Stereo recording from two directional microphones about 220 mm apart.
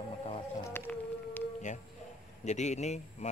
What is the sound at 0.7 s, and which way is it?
Music, 10° left (ahead or behind).